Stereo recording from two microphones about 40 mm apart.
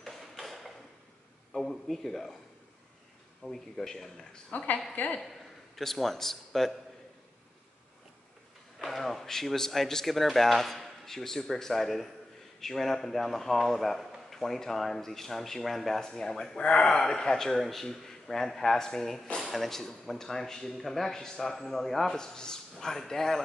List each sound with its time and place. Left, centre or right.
0.0 s a sound: centre
1.5 s speech: centre
3.4 s speech: centre
4.5 s a woman's voice: left
5.8 s speech: centre
8.7 s a man's voice: centre
16.1 s speech: centre